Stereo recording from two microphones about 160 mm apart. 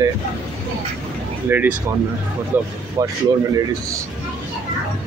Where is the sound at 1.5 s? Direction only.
15° right (ahead or behind).